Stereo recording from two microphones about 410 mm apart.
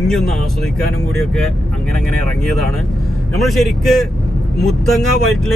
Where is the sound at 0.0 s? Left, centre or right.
Centre.